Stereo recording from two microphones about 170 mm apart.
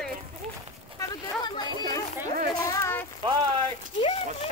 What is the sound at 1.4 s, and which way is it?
Chatter, 25° left (ahead or behind).